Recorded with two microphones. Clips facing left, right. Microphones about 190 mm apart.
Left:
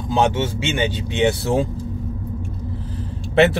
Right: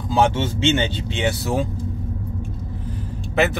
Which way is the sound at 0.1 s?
20° left (ahead or behind).